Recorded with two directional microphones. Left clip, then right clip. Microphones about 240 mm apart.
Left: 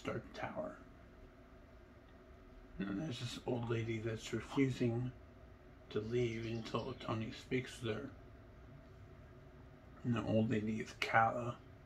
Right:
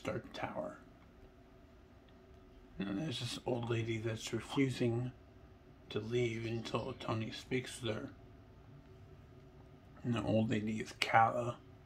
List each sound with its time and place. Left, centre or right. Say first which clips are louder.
0.0 s a sound: right 2 dB; right
2.8 s speech: right 3 dB; right
10.0 s speech: right 2 dB; centre